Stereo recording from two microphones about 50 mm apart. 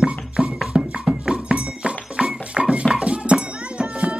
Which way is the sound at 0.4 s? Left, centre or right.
Centre.